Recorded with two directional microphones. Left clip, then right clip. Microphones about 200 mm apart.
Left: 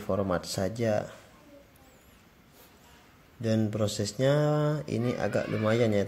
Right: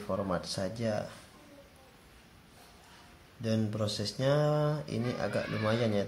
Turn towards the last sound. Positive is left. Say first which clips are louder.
# left 4 dB
turn(degrees=30)  # may be behind; listen again after turning